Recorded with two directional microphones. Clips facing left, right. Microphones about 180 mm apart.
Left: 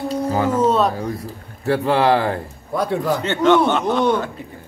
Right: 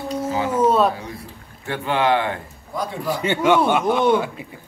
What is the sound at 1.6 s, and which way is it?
Speech, 35° left (ahead or behind).